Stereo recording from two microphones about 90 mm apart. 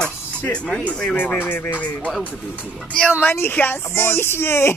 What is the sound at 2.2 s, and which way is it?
Speech, 10° right (ahead or behind).